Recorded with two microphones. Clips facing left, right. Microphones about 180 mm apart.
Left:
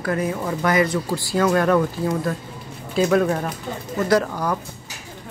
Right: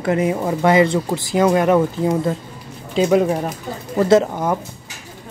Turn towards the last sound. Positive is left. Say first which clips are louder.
# right 5 dB
turn(degrees=-20)  # may be behind; listen again after turning